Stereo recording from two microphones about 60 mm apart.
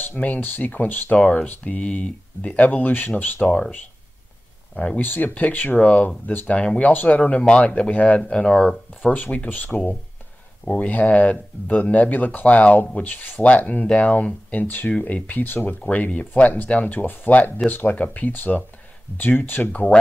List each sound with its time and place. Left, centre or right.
0.0 s speech: left
3.3 s speech: left
4.7 s speech: centre
5.0 s speech: left
8.2 s speech: centre
9.0 s speech: left